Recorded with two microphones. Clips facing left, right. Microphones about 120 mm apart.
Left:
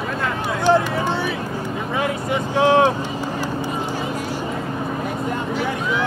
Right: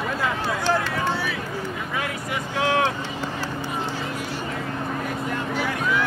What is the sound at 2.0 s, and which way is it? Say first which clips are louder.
Vehicle: left 7 dB; 25° left (ahead or behind).